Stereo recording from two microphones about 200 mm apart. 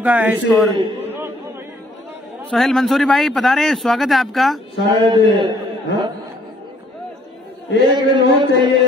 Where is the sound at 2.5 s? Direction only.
Centre (ahead or behind).